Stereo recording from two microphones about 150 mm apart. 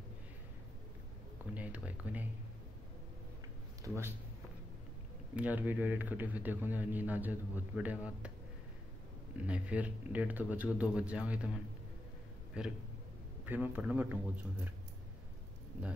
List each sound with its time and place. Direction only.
1.5 s a man's voice: 10° right (ahead or behind)
3.8 s a man's voice: 20° right (ahead or behind)
5.3 s a man's voice: 10° right (ahead or behind)
9.5 s a man's voice: 10° right (ahead or behind)